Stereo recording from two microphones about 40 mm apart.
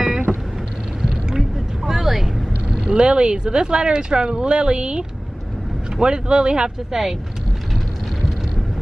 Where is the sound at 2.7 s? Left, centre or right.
Right.